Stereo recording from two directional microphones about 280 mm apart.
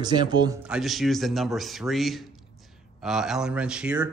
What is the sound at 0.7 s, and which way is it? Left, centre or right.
Speech, centre.